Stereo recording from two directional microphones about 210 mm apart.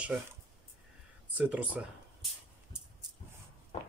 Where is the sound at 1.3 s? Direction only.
5° right (ahead or behind).